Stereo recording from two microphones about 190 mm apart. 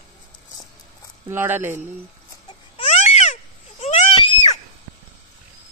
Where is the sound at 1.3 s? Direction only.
10° right (ahead or behind).